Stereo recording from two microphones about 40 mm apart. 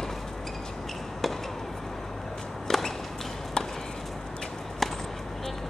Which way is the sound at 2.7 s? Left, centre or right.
Centre.